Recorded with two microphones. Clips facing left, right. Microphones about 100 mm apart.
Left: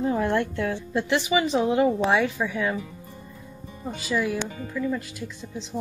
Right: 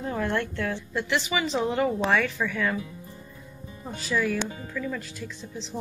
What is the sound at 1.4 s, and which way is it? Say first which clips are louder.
Speech: left 3 dB; 10° left (ahead or behind).